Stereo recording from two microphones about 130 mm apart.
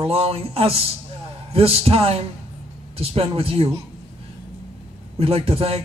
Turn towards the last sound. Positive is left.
turn(degrees=-45)  # may be behind; listen again after turning